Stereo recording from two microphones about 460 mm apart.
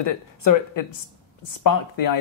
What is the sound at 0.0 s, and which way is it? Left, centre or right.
Speech, left.